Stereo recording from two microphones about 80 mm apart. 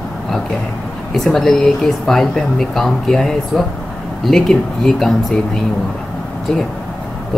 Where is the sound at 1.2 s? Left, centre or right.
Centre.